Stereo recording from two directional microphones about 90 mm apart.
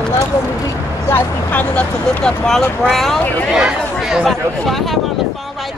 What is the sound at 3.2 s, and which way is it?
Speech, 20° left (ahead or behind).